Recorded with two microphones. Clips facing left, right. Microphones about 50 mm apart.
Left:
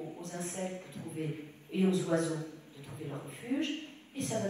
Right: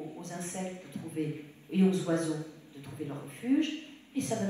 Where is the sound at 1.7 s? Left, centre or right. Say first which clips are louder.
Right 2 dB; right.